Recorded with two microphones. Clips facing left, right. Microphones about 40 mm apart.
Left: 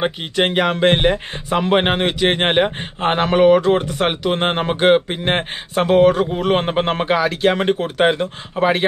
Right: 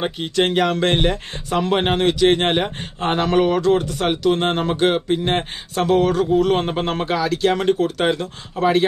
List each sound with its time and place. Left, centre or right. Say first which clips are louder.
0.0 s speech: left 1 dB; centre